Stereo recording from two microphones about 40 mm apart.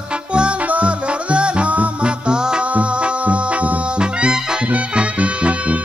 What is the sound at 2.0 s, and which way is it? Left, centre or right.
Music, right.